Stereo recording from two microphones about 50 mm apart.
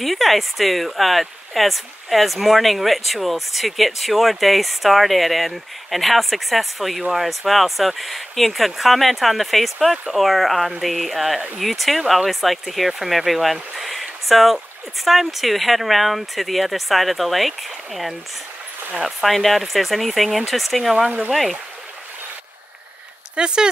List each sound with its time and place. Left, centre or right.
0.0 s speech: centre
23.3 s speech: centre